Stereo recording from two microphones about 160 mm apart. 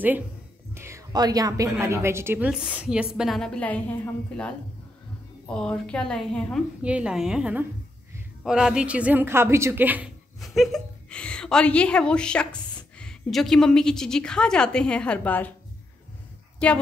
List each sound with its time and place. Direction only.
0.7 s a woman's voice: 15° right (ahead or behind); by 15.5 s 10° left (ahead or behind)
16.6 s a woman's voice: 5° left (ahead or behind)